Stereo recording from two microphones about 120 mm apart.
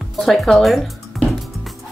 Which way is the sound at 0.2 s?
Centre (ahead or behind).